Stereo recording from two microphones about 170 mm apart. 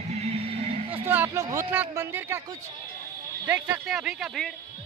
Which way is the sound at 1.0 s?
15° right (ahead or behind).